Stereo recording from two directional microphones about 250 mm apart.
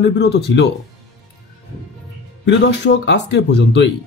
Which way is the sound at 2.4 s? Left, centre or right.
Left.